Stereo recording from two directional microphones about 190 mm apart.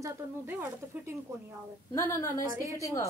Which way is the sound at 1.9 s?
15° left (ahead or behind).